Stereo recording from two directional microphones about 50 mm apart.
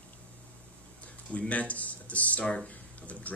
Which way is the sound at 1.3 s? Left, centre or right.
Left.